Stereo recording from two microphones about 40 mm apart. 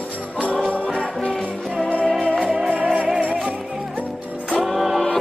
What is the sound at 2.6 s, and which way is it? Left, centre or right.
Music, right.